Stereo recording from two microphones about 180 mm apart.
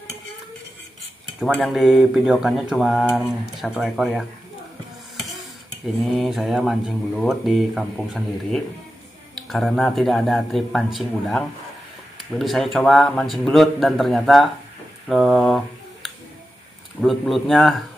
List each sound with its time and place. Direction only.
1.4 s speech: centre (ahead or behind)
6.0 s speech: centre (ahead or behind)